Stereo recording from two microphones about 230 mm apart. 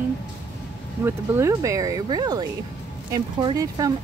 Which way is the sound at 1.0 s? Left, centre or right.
Centre.